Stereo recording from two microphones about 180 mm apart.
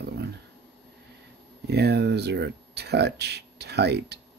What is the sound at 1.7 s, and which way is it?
Speech, 65° right (ahead or behind).